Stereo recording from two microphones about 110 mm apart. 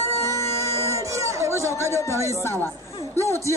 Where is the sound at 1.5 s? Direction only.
25° left (ahead or behind).